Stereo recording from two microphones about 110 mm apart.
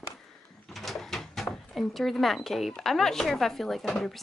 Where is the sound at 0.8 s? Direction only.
Centre (ahead or behind).